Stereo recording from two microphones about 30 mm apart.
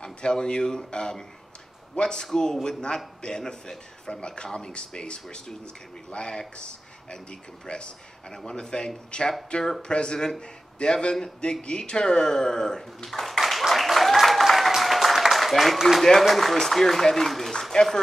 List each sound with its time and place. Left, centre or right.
0.0 s a man's voice: left
4.1 s a man's voice: left; by 12.8 s centre
13.0 s speech: centre
13.4 s applause: centre
16.0 s speech: centre
17.5 s a sound: centre